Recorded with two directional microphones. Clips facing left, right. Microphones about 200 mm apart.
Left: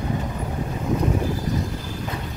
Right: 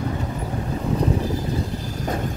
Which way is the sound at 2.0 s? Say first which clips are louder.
Right 8 dB; 45° right (ahead or behind).